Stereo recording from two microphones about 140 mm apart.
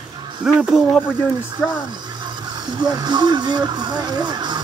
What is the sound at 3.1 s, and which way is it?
Speech, 30° right (ahead or behind).